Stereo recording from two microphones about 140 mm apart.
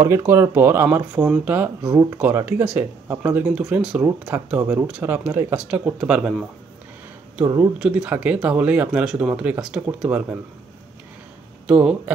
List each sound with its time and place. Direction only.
0.0 s speech: 20° right (ahead or behind)
1.1 s speech: 5° right (ahead or behind)
1.8 s speech: 25° right (ahead or behind)
2.3 s speech: 15° right (ahead or behind)
7.4 s speech: 20° right (ahead or behind)
7.8 s speech: 5° right (ahead or behind)
11.6 s speech: 5° right (ahead or behind)